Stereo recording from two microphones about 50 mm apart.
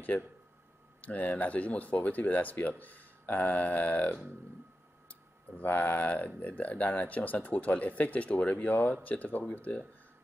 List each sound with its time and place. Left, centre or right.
0.1 s speech: left
5.6 s speech: left